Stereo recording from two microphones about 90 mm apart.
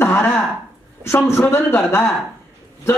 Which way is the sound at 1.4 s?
25° left (ahead or behind).